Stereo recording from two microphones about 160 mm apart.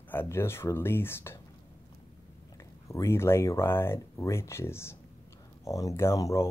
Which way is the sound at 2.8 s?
20° left (ahead or behind).